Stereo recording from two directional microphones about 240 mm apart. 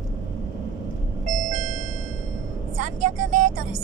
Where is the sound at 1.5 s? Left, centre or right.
Right.